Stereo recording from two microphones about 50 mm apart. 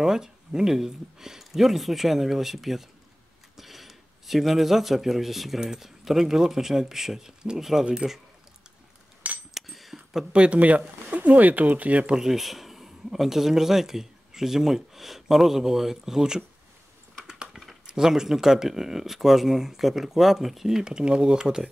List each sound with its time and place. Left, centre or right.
0.0 s speech: centre
9.5 s a sound: centre
10.3 s speech: right
12.1 s speech: centre
17.5 s a sound: centre
17.8 s speech: centre